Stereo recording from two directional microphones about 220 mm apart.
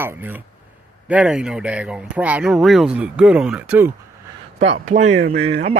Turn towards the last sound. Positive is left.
turn(degrees=-30)  # may be behind; listen again after turning